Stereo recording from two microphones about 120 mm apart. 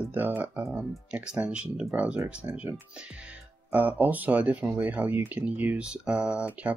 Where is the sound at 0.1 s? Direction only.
15° right (ahead or behind).